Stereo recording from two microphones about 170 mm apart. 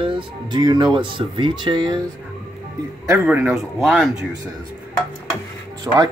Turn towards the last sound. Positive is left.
turn(degrees=-15)  # may be behind; listen again after turning